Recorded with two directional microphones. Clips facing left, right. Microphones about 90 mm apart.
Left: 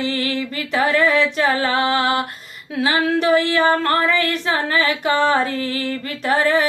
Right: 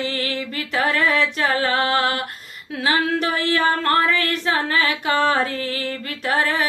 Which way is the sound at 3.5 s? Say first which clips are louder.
Left 2 dB; 25° left (ahead or behind).